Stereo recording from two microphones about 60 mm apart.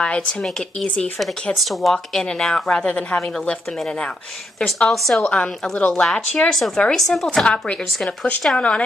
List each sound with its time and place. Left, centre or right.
0.0 s a woman's voice: centre
1.2 s speech: centre
2.2 s a woman's voice: centre
4.6 s a woman's voice: centre
5.3 s a woman's voice: left
6.8 s speech: centre
7.3 s a woman's voice: centre